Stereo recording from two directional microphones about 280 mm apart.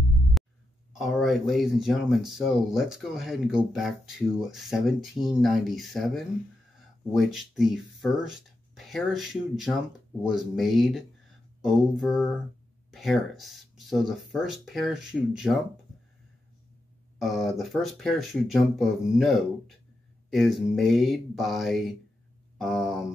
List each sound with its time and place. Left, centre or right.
0.9 s speech: centre
17.2 s speech: centre